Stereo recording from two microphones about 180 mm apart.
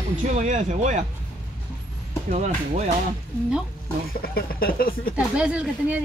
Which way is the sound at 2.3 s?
40° right (ahead or behind).